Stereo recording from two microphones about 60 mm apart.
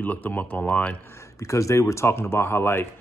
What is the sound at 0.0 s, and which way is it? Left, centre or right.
Speech, left.